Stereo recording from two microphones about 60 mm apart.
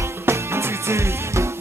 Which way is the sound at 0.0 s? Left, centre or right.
Right.